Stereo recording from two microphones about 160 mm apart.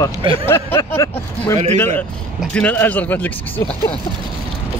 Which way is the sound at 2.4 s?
10° left (ahead or behind).